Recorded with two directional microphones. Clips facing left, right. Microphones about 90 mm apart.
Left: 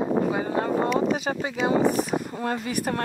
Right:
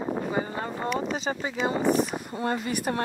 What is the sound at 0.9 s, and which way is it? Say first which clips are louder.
Speech: left 5 dB; 5° left (ahead or behind).